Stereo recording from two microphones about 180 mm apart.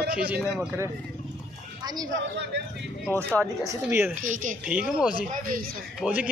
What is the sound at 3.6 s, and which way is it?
Speech, 15° right (ahead or behind).